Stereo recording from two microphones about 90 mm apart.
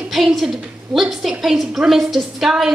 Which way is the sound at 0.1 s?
Centre (ahead or behind).